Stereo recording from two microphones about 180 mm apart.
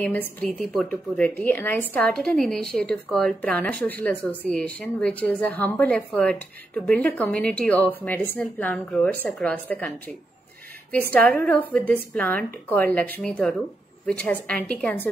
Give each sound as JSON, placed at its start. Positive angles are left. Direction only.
{"t": 0.0, "sound": "a woman's voice", "side_deg": 10}
{"t": 10.9, "sound": "a woman's voice", "side_deg": 10}